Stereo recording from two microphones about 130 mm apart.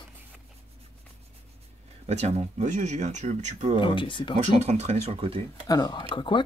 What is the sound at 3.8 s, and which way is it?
Speech, 40° left (ahead or behind).